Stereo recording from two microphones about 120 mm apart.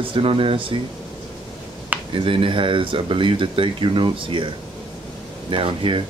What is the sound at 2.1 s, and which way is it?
Speech, 50° right (ahead or behind).